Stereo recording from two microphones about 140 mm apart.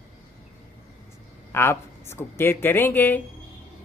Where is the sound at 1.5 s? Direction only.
20° left (ahead or behind).